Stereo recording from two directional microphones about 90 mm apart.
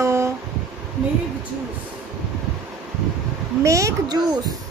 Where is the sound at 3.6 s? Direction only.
35° right (ahead or behind).